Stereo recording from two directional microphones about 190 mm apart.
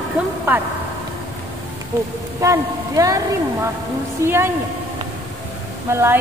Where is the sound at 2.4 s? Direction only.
15° right (ahead or behind).